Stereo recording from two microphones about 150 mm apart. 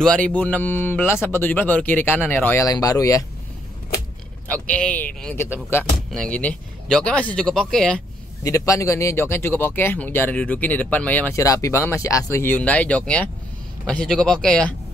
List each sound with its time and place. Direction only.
0.0 s speech: 5° left (ahead or behind); by 3.3 s 20° left (ahead or behind)
4.5 s speech: 10° left (ahead or behind)
6.0 s speech: 5° left (ahead or behind)
8.5 s speech: 20° left (ahead or behind)
11.4 s speech: 20° left (ahead or behind)